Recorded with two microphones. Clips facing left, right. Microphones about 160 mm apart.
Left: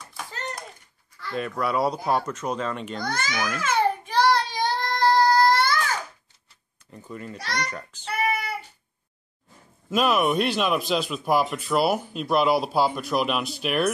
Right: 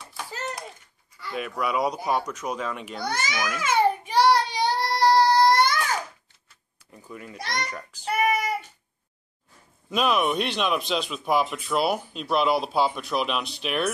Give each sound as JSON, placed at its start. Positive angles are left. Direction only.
{"t": 0.0, "sound": "a sound", "side_deg": -5}
{"t": 1.2, "sound": "speech", "side_deg": -5}
{"t": 3.4, "sound": "child singing", "side_deg": -10}
{"t": 6.9, "sound": "speech", "side_deg": -5}
{"t": 8.2, "sound": "child singing", "side_deg": -20}
{"t": 9.8, "sound": "speech", "side_deg": 5}